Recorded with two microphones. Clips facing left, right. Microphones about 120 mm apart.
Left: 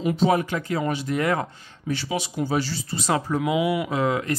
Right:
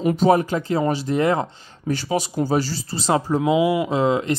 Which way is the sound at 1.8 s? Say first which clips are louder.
Right 4 dB; 40° right (ahead or behind).